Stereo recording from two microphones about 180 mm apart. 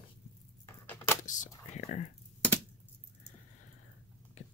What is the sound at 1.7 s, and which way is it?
Speech, 40° left (ahead or behind).